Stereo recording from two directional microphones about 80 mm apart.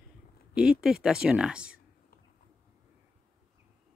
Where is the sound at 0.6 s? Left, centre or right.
Centre.